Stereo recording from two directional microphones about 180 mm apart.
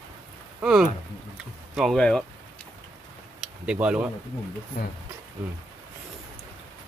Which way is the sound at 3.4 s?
5° right (ahead or behind).